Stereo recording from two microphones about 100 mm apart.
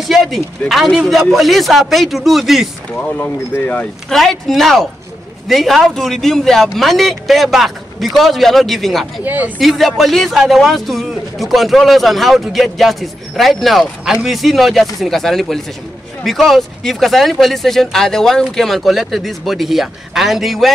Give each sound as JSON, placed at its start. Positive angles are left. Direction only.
{"t": 0.1, "sound": "a man's voice", "side_deg": 0}
{"t": 2.9, "sound": "speech", "side_deg": 10}
{"t": 4.1, "sound": "a man's voice", "side_deg": 0}
{"t": 9.2, "sound": "speech", "side_deg": -15}
{"t": 9.6, "sound": "a man's voice", "side_deg": 0}